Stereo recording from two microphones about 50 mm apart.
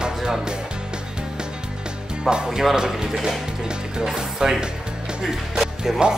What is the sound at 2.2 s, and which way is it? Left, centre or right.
Speech, centre.